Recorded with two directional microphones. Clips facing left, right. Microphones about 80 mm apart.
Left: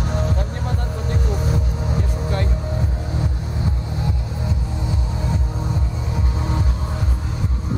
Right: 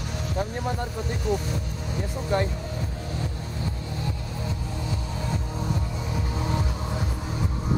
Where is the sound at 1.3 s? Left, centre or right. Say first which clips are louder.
Left 6 dB; left.